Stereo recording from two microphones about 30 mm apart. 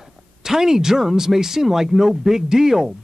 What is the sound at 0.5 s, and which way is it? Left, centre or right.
Speech, centre.